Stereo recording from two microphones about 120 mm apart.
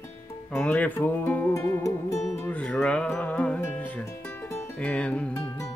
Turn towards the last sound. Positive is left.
turn(degrees=10)  # may be behind; listen again after turning